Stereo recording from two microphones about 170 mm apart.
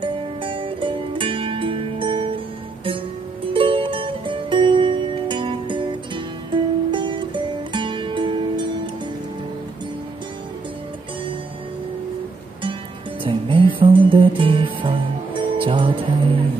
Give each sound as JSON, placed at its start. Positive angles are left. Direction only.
{"t": 0.0, "sound": "music", "side_deg": -30}
{"t": 13.2, "sound": "music", "side_deg": -30}